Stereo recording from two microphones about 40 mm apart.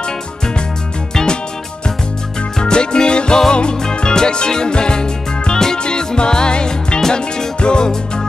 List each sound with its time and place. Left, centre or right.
1.1 s music: centre
2.6 s music: left